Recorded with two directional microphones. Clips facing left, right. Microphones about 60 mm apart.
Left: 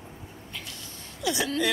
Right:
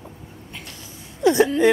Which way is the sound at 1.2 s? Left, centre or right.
Right.